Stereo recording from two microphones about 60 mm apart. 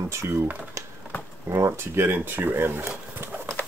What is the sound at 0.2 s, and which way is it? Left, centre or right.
Speech, right.